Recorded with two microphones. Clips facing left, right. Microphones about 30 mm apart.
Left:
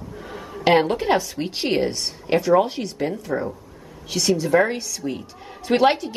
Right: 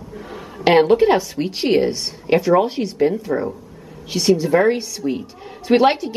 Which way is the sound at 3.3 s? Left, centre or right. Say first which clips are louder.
Right 4 dB; right.